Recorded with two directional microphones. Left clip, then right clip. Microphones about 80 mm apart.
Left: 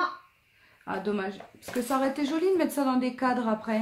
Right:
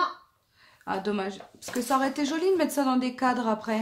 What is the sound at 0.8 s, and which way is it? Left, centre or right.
Speech, right.